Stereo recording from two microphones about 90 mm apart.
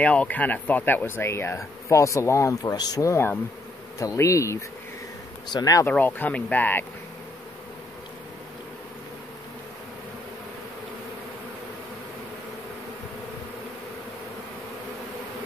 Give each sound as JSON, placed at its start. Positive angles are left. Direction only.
{"t": 0.0, "sound": "speech", "side_deg": 15}
{"t": 2.6, "sound": "speech", "side_deg": 50}
{"t": 3.1, "sound": "speech", "side_deg": 25}
{"t": 4.0, "sound": "bee", "side_deg": 35}
{"t": 5.5, "sound": "speech", "side_deg": 45}
{"t": 5.9, "sound": "speech", "side_deg": 20}